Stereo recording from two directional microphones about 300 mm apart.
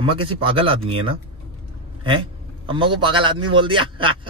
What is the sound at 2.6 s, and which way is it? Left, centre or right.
Speech, centre.